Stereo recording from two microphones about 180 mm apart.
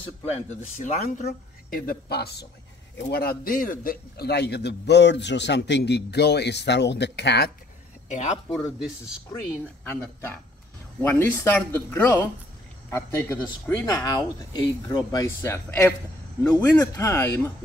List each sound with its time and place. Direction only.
0.2 s speech: 40° left (ahead or behind)
1.2 s a woman's voice: 55° left (ahead or behind)
8.1 s speech: 40° left (ahead or behind)
8.8 s speech: 5° right (ahead or behind)
9.8 s speech: 10° left (ahead or behind)